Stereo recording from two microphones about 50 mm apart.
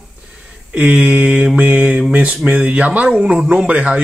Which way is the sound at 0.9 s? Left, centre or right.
Right.